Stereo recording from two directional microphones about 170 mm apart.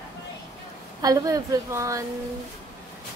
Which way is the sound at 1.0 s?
20° right (ahead or behind).